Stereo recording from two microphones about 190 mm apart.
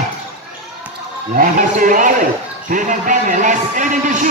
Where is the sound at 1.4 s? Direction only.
45° right (ahead or behind).